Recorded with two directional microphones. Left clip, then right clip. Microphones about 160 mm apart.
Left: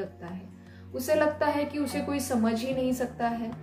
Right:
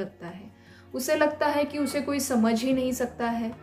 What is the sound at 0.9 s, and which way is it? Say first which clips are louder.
Speech: right 1 dB; 15° right (ahead or behind).